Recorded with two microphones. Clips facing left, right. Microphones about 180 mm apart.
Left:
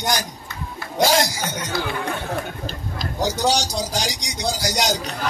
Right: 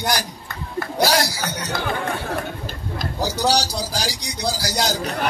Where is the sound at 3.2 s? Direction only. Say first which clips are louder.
Even; 20° left (ahead or behind).